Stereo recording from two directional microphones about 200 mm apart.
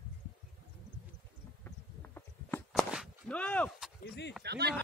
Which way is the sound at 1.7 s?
10° left (ahead or behind).